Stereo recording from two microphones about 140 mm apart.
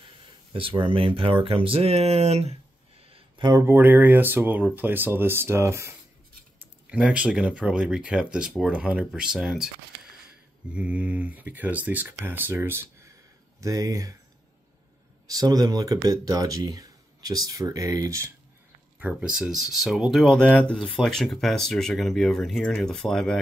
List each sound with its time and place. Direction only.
0.5 s speech: 40° right (ahead or behind)
3.0 s a sound: 40° right (ahead or behind)
3.6 s speech: 15° right (ahead or behind)
6.6 s speech: 10° right (ahead or behind)
10.7 s speech: 10° right (ahead or behind); by 14.1 s 25° right (ahead or behind)
15.2 s speech: 25° right (ahead or behind)
18.9 s speech: 10° right (ahead or behind)